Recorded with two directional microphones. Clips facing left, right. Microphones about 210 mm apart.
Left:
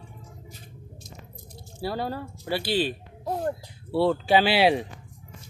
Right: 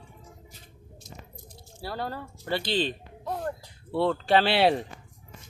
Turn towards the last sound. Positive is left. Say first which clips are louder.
# left 2 dB
turn(degrees=5)  # may be behind; listen again after turning